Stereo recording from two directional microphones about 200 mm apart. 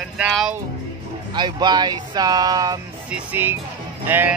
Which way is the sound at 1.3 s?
20° right (ahead or behind).